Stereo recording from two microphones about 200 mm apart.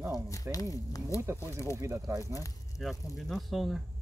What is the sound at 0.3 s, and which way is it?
Speech, 15° left (ahead or behind).